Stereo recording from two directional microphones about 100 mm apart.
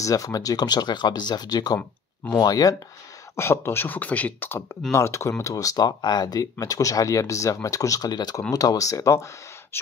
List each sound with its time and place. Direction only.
0.0 s speech: 35° left (ahead or behind)
3.3 s speech: 25° left (ahead or behind)